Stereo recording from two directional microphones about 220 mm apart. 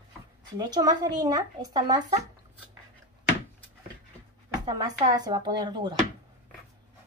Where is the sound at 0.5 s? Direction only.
15° right (ahead or behind).